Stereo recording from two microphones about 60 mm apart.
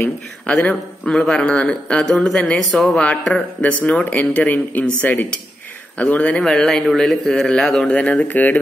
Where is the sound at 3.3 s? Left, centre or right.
Left.